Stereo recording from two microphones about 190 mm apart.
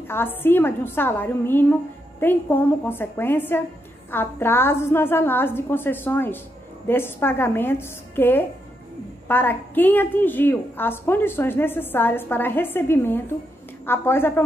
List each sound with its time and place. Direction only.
0.1 s a woman's voice: 10° left (ahead or behind)